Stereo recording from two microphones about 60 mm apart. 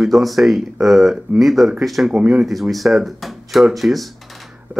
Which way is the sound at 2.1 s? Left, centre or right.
Centre.